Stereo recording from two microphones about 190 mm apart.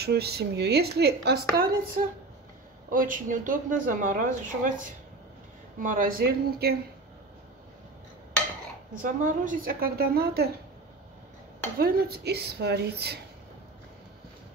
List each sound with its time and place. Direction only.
0.0 s speech: 55° right (ahead or behind)
2.0 s speech: 45° right (ahead or behind)
8.9 s speech: 40° right (ahead or behind)
11.8 s speech: 55° right (ahead or behind)